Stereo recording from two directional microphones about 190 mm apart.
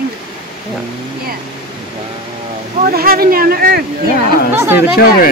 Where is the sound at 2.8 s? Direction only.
50° right (ahead or behind).